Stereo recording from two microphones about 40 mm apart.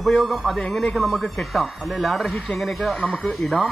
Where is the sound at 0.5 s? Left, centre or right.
Centre.